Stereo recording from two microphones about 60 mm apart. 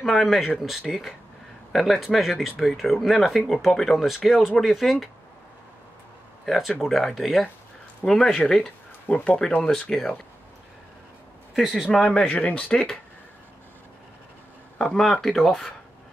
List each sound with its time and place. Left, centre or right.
0.0 s speech: centre
6.4 s speech: centre
9.0 s speech: left
11.5 s speech: centre
11.9 s speech: centre
15.0 s speech: centre